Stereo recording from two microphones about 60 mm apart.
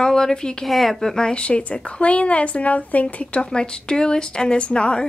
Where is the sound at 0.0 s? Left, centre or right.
Centre.